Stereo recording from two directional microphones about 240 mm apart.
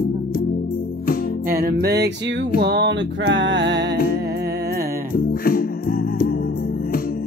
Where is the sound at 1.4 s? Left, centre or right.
Right.